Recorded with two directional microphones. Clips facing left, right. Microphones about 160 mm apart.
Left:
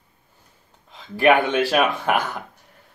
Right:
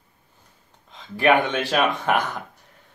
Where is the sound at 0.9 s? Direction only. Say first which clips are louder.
Left 2 dB; 5° left (ahead or behind).